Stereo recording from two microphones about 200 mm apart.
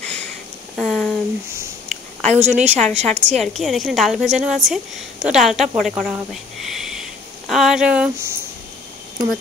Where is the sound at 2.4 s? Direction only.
35° right (ahead or behind).